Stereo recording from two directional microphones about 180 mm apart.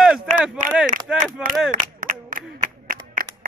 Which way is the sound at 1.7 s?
50° right (ahead or behind).